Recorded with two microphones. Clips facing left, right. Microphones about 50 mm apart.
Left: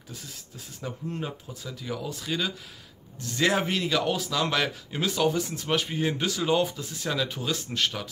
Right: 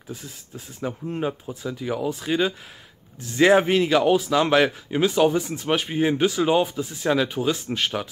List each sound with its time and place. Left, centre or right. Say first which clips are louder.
0.7 s speech: right 6 dB; right